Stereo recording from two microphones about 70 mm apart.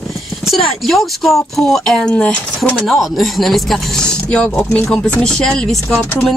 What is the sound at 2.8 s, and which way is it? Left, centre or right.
A woman's voice, centre.